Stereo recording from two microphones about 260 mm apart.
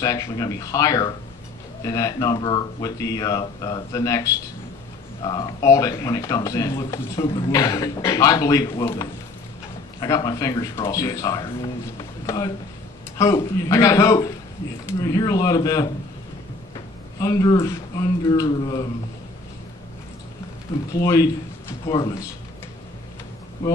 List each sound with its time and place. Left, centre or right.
0.0 s a man's voice: centre
13.2 s a man's voice: centre
17.2 s a man's voice: centre
20.9 s speech: centre
23.6 s a man's voice: centre